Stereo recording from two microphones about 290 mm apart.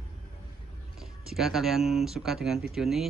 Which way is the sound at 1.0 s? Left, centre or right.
Centre.